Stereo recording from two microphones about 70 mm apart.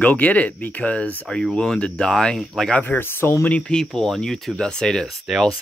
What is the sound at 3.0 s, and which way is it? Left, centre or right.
Speech, left.